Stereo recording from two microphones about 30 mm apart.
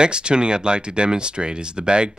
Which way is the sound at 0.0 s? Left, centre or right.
Right.